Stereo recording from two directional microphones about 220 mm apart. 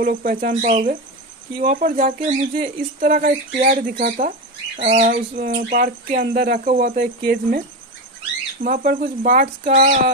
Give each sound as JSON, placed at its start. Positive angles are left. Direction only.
{"t": 0.0, "sound": "speech", "side_deg": -40}
{"t": 4.8, "sound": "speech", "side_deg": -35}
{"t": 8.6, "sound": "speech", "side_deg": -40}